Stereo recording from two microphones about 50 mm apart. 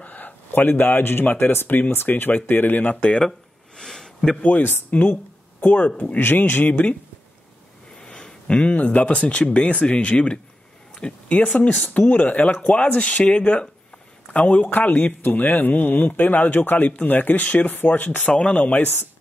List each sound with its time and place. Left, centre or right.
0.0 s a man's voice: left
3.0 s speech: left
3.3 s a sound: centre
4.4 s a man's voice: left
6.1 s a man's voice: left
8.0 s a man's voice: centre; by 18.2 s left
18.2 s speech: left